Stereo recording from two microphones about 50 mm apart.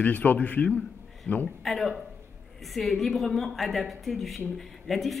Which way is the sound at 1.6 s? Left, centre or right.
Centre.